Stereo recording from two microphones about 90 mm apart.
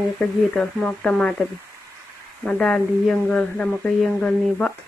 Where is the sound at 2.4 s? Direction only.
10° left (ahead or behind).